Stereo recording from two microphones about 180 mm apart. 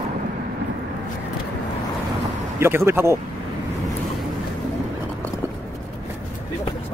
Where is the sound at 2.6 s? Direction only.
15° right (ahead or behind).